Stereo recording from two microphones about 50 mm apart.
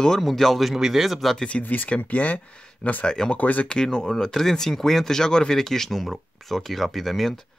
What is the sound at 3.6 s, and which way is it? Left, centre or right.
Speech, centre.